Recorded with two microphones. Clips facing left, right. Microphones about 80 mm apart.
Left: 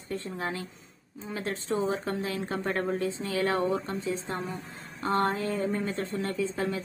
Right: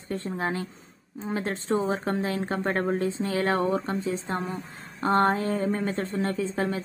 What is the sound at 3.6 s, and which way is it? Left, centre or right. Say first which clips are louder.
Speech: right 3 dB; right.